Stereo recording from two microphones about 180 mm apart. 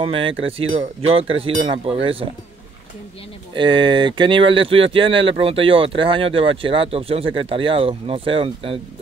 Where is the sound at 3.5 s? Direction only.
25° right (ahead or behind).